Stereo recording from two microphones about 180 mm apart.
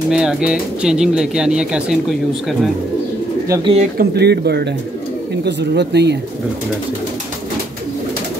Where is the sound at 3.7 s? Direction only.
40° right (ahead or behind).